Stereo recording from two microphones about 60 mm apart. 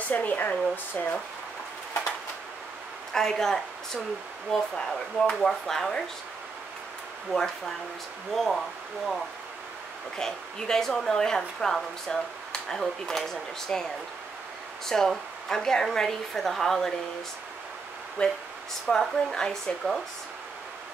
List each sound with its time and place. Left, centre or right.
0.1 s speech: left
3.1 s speech: centre
7.3 s speech: centre
14.9 s speech: centre
18.2 s speech: centre